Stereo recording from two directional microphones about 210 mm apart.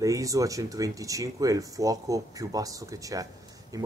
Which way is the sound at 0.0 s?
15° right (ahead or behind).